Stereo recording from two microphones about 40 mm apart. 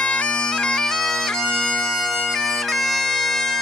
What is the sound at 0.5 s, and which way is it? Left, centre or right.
Bagpipes, centre.